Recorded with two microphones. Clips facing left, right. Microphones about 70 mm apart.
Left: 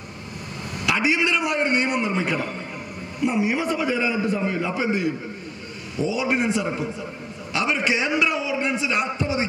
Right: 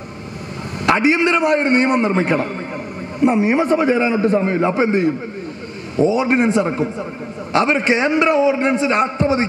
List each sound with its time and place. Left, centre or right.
0.8 s a man's voice: right